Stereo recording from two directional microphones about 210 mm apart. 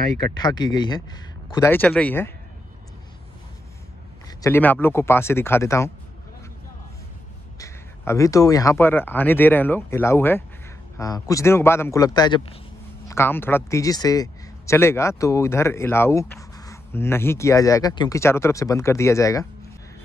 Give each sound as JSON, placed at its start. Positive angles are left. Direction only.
{"t": 0.2, "sound": "a man's voice", "side_deg": 20}
{"t": 4.4, "sound": "a man's voice", "side_deg": 10}
{"t": 7.5, "sound": "a man's voice", "side_deg": 15}